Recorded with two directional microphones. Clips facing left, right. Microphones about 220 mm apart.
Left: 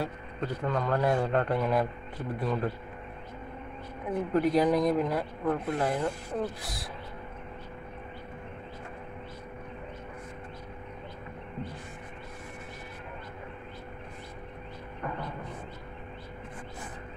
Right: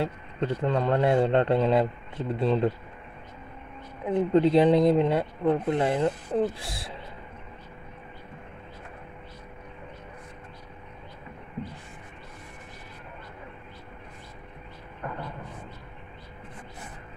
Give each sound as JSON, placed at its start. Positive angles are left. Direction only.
{"t": 0.0, "sound": "speech", "side_deg": -25}
{"t": 4.1, "sound": "speech", "side_deg": -25}